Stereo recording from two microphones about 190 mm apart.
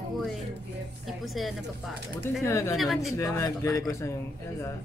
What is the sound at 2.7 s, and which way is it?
Speech, centre (ahead or behind).